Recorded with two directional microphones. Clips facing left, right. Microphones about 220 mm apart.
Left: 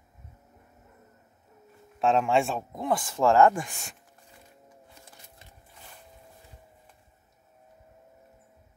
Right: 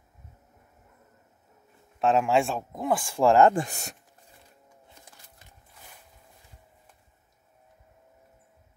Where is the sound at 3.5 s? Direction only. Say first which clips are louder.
Right 5 dB; 40° right (ahead or behind).